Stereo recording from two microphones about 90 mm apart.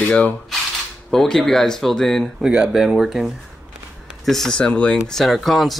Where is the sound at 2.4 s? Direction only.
5° right (ahead or behind); by 5.2 s 15° left (ahead or behind).